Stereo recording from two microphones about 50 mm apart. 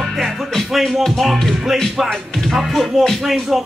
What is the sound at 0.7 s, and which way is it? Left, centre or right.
Speech, centre.